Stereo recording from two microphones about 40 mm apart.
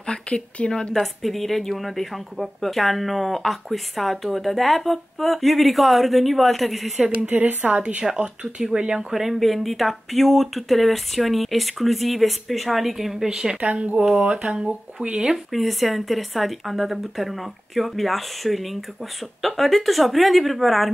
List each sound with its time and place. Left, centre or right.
0.0 s speech: left
1.2 s speech: centre
7.2 s speech: right
8.5 s speech: right
9.1 s speech: centre
13.6 s speech: right
15.3 s speech: centre